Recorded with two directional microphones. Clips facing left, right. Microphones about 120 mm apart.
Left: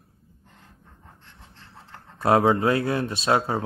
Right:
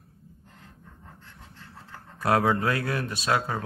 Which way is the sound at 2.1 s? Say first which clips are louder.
Left 4 dB; 25° left (ahead or behind).